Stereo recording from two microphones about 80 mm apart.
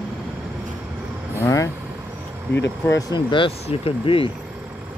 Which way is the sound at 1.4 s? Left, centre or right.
Left.